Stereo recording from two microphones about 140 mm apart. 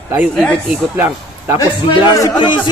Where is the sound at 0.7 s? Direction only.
15° right (ahead or behind).